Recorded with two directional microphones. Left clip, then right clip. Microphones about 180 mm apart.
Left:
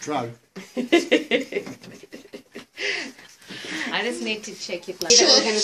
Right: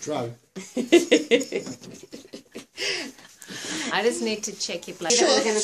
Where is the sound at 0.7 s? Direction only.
70° right (ahead or behind).